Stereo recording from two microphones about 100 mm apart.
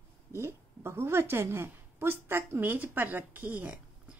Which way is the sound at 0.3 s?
25° right (ahead or behind).